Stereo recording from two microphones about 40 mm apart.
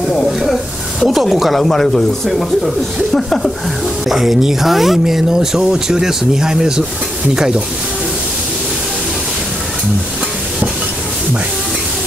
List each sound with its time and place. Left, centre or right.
1.0 s speech: centre
1.6 s speech: centre
4.1 s speech: centre